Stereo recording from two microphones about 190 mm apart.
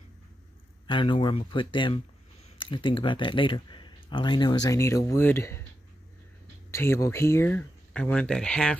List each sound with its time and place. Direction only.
0.8 s speech: 25° left (ahead or behind)
6.7 s speech: 15° left (ahead or behind)